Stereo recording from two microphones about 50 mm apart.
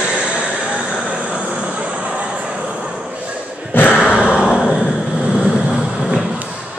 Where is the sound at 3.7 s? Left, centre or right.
Left.